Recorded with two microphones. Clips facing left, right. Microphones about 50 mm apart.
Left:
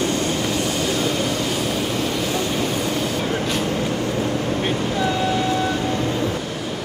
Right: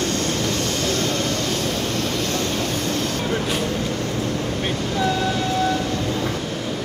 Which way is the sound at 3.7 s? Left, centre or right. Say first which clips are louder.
Left 2 dB; centre.